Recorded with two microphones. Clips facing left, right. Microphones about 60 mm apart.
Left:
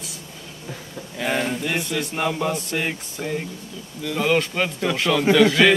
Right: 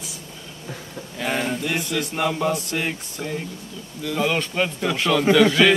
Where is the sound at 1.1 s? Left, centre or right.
Centre.